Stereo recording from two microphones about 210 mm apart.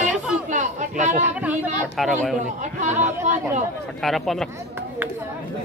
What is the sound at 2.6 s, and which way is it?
Speech, 35° right (ahead or behind).